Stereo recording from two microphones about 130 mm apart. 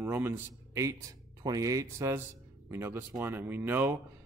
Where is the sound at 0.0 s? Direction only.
15° right (ahead or behind).